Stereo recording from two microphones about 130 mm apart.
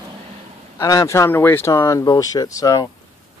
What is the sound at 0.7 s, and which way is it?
Speech, 25° left (ahead or behind).